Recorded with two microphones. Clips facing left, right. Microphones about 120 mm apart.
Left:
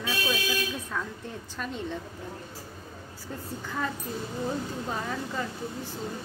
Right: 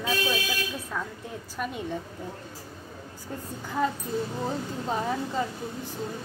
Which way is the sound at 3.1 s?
20° right (ahead or behind).